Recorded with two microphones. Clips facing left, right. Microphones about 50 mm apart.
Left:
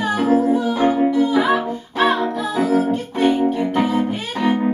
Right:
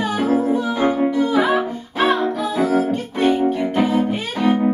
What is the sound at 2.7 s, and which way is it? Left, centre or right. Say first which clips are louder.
Music: left 1 dB; centre.